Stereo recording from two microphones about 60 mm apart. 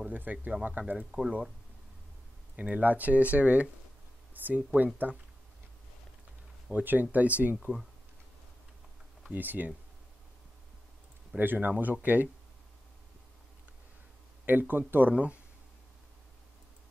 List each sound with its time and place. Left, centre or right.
0.1 s speech: right
2.5 s speech: right
6.7 s speech: right
9.3 s speech: right
11.3 s speech: right
14.4 s speech: right